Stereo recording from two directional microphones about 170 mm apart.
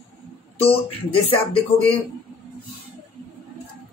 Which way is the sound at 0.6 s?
30° left (ahead or behind).